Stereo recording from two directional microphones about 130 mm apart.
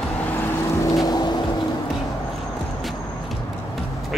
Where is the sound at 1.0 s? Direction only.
30° left (ahead or behind).